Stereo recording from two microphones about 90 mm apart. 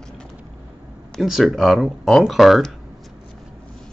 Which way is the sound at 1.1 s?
Centre (ahead or behind).